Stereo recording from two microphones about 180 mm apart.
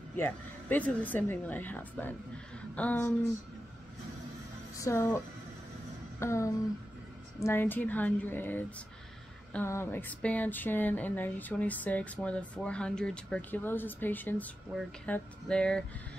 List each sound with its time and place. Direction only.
0.2 s speech: 10° left (ahead or behind)
4.7 s speech: 15° left (ahead or behind)
6.1 s a sound: 15° left (ahead or behind)
7.3 s speech: 15° left (ahead or behind)